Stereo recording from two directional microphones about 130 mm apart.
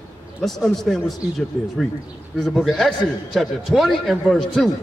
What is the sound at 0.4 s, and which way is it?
Speech, 5° left (ahead or behind).